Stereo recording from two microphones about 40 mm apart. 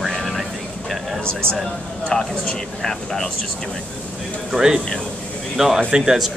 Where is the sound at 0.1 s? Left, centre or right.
Centre.